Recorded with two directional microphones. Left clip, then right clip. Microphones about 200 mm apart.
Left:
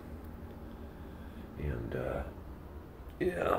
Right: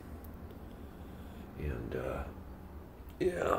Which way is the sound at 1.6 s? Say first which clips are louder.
Left 1 dB; centre (ahead or behind).